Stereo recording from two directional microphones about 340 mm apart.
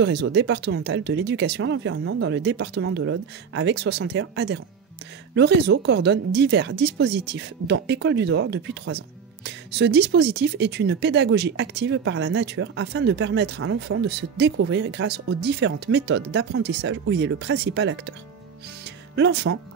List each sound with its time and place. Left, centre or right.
0.0 s speech: right
19.1 s speech: right